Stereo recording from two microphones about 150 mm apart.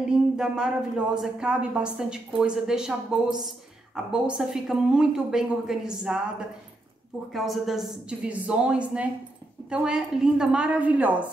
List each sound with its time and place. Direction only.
0.0 s a woman's voice: 5° right (ahead or behind)
7.3 s a woman's voice: centre (ahead or behind)